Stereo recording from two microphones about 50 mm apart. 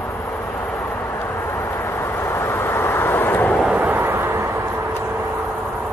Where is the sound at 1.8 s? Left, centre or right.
Left.